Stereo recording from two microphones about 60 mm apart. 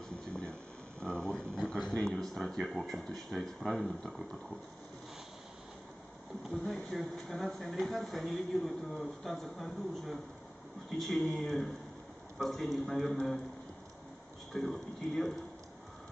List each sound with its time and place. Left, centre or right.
0.3 s a sound: centre
1.0 s speech: centre
6.5 s speech: centre
14.5 s speech: centre